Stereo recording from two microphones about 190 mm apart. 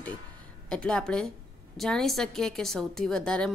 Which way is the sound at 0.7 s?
5° left (ahead or behind).